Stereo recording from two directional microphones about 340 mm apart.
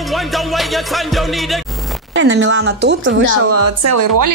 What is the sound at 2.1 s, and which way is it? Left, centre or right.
Speech, right.